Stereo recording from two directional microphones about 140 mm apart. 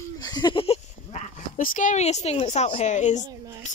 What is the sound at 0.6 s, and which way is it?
Sheep, 45° left (ahead or behind).